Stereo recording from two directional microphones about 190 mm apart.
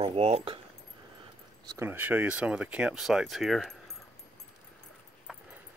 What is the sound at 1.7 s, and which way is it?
Speech, 10° right (ahead or behind).